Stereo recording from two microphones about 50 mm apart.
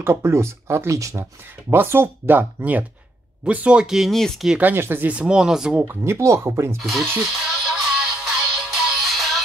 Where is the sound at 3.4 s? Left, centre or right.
Right.